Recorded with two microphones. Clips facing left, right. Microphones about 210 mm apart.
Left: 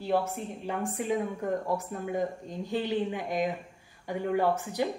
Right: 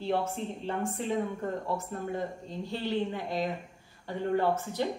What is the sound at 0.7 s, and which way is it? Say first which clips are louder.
Speech: left 2 dB; 5° left (ahead or behind).